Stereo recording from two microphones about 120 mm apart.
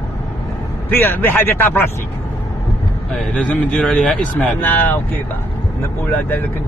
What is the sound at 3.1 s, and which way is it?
Speech, 10° left (ahead or behind).